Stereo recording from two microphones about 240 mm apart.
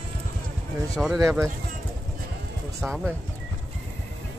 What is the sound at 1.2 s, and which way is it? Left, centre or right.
Speech, centre.